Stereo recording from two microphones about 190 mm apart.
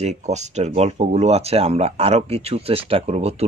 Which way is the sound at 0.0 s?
35° right (ahead or behind).